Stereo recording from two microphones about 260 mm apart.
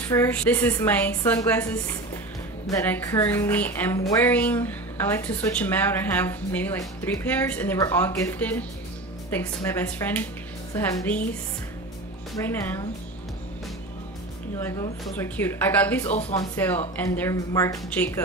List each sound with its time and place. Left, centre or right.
0.1 s music: centre
12.4 s music: centre
14.6 s music: centre
16.1 s speech: left
16.3 s music: centre